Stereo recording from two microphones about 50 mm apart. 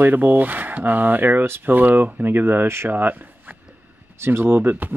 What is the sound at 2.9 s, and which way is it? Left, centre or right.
Speech, right.